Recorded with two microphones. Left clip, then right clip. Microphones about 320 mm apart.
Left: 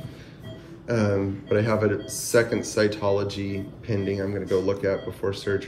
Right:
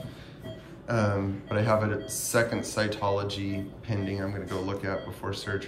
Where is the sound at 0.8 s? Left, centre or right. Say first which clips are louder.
Left 4 dB; centre.